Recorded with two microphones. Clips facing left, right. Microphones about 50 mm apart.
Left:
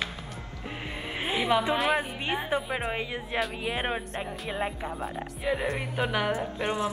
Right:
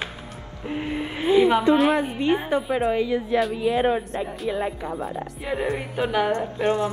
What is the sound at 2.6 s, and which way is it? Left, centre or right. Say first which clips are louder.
Music: right 8 dB; centre.